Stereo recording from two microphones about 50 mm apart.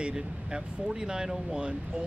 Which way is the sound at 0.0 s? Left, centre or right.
Centre.